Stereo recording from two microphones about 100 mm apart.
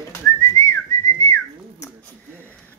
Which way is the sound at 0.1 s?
30° left (ahead or behind).